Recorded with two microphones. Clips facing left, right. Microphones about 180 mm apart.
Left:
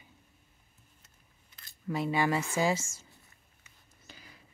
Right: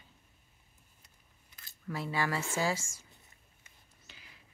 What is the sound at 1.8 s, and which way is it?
Speech, 20° left (ahead or behind).